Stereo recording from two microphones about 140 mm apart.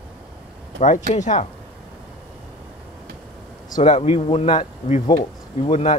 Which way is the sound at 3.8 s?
50° left (ahead or behind).